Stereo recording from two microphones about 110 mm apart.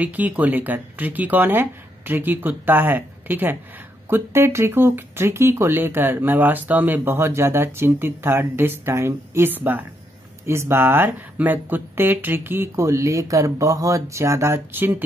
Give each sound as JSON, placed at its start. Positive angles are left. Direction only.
{"t": 0.0, "sound": "speech", "side_deg": -15}